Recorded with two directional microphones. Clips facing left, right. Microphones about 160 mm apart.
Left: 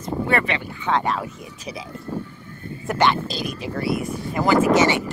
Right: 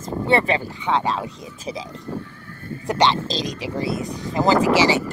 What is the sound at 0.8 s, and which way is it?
Speech, 15° right (ahead or behind).